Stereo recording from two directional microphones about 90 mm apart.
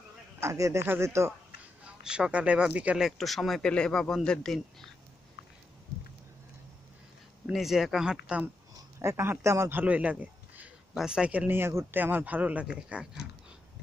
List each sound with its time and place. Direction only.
0.4 s speech: 35° right (ahead or behind)
2.0 s speech: 10° right (ahead or behind)
3.1 s a man's voice: centre (ahead or behind)
7.5 s a man's voice: 5° right (ahead or behind)
9.0 s a man's voice: 25° right (ahead or behind)
9.8 s speech: 15° right (ahead or behind)